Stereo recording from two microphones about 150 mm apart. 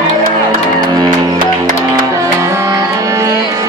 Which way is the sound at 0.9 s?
25° right (ahead or behind).